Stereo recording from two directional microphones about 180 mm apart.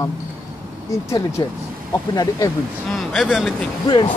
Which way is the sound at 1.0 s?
15° left (ahead or behind).